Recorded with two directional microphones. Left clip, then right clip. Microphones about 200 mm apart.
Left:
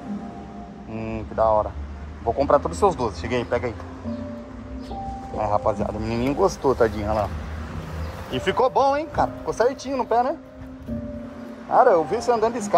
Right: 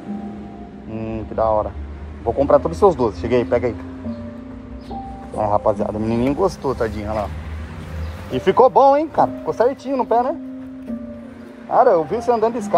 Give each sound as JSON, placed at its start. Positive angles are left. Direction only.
{"t": 0.9, "sound": "a sound", "side_deg": 45}
{"t": 1.3, "sound": "speech", "side_deg": 5}
{"t": 3.0, "sound": "speech", "side_deg": 0}
{"t": 5.4, "sound": "speech", "side_deg": 5}
{"t": 8.3, "sound": "speech", "side_deg": -5}
{"t": 9.5, "sound": "speech", "side_deg": 0}
{"t": 11.7, "sound": "speech", "side_deg": 5}